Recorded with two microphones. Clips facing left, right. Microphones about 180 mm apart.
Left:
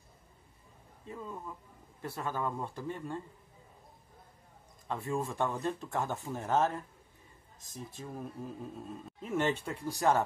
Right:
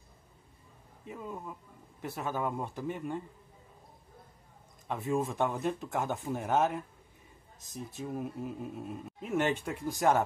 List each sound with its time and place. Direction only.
1.0 s a man's voice: 15° right (ahead or behind)
4.8 s a man's voice: 20° right (ahead or behind)